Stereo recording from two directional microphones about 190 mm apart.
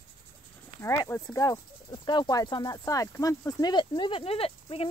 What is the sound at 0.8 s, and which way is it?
Speech, 15° left (ahead or behind).